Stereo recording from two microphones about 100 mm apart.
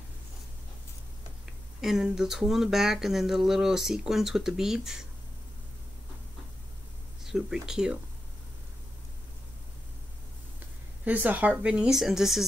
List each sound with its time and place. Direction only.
1.8 s speech: 5° right (ahead or behind)
7.2 s speech: 5° right (ahead or behind)
11.1 s speech: 15° right (ahead or behind)